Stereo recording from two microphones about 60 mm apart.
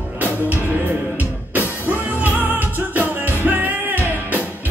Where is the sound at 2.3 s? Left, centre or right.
Right.